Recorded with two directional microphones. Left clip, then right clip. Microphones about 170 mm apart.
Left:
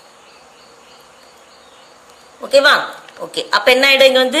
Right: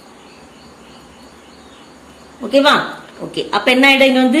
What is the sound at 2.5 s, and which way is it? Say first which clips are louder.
A woman's voice: left 1 dB; 40° left (ahead or behind).